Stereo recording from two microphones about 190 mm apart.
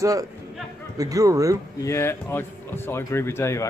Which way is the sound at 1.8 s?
15° left (ahead or behind).